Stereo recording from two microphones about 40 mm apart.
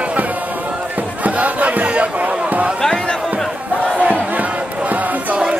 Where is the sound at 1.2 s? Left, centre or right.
Right.